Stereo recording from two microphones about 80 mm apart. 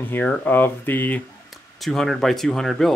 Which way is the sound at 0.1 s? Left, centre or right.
Left.